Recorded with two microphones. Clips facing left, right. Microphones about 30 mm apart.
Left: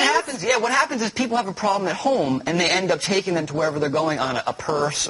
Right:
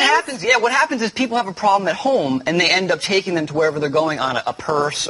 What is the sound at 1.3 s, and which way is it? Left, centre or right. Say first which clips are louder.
A man's voice: right 6 dB; centre.